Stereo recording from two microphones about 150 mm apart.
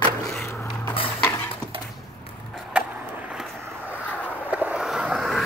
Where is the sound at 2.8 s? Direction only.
5° right (ahead or behind).